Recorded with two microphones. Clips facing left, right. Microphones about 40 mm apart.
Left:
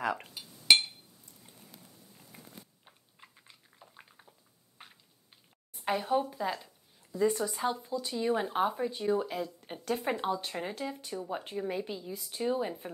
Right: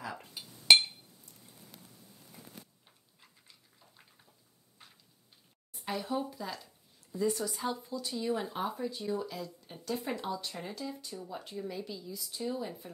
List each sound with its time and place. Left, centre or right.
0.0 s speech: left
2.8 s a sound: left
5.9 s speech: left
7.2 s speech: left